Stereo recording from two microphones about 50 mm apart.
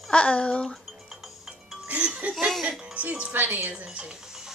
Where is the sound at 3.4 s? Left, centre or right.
Right.